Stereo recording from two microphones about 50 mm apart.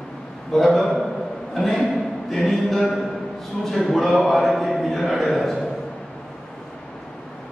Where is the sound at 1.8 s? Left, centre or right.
Centre.